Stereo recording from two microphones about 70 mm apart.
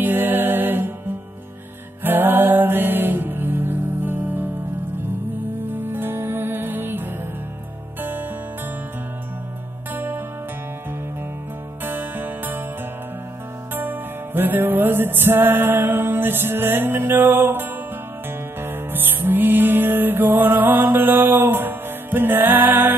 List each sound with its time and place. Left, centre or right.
0.0 s music: right
2.0 s music: right
5.7 s music: right
9.9 s music: right
11.8 s music: right
13.7 s music: right